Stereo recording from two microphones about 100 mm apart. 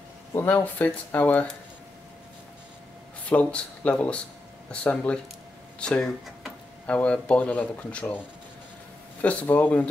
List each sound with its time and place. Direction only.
0.5 s speech: 15° left (ahead or behind)
3.3 s speech: 15° left (ahead or behind)
9.2 s speech: 15° left (ahead or behind)